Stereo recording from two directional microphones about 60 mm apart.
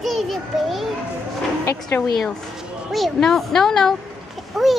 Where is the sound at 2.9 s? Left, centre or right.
Centre.